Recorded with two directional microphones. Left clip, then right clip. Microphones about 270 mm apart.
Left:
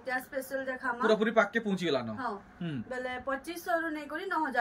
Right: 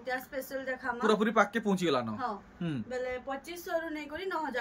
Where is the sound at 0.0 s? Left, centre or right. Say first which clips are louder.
Left 1 dB; centre.